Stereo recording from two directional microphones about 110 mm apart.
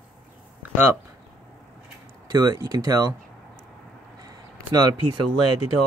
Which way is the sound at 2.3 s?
35° right (ahead or behind).